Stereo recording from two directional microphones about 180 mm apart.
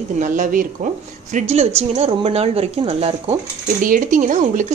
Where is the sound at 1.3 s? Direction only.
35° right (ahead or behind).